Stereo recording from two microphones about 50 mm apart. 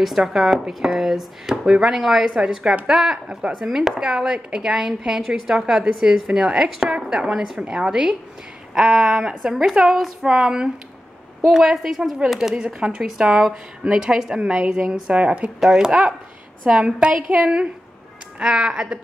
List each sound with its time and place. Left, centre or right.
0.0 s speech: centre
6.2 s speech: centre
15.6 s speech: centre
15.9 s speech: right
18.4 s speech: centre